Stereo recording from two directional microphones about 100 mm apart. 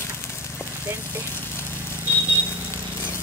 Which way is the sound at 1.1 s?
25° left (ahead or behind).